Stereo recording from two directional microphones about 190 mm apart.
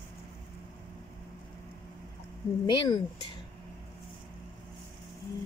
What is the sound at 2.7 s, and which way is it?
Speech, 25° left (ahead or behind).